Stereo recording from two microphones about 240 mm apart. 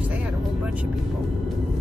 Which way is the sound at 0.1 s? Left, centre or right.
Centre.